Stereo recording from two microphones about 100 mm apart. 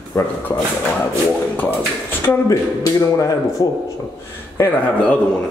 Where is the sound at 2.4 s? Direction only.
35° left (ahead or behind).